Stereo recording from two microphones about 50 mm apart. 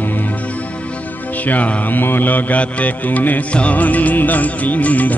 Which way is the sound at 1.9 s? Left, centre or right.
Left.